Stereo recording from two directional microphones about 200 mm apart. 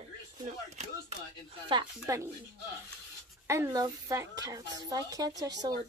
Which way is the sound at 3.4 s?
15° right (ahead or behind).